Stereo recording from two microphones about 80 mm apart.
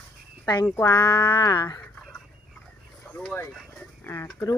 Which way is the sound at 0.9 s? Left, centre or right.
Left.